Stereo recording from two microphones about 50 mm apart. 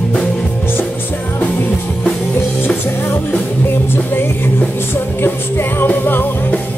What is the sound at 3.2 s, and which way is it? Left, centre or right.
Music, left.